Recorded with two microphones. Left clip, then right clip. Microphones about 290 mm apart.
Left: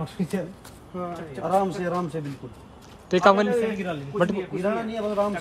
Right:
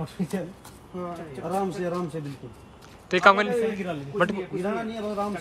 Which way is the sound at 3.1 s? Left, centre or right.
Centre.